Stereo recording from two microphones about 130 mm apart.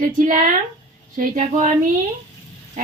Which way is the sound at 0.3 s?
85° right.